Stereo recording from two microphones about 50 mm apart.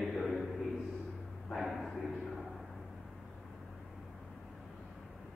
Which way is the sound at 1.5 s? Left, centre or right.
Centre.